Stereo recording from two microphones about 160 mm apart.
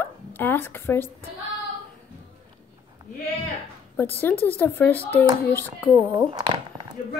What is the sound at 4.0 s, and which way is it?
Speech, 10° left (ahead or behind).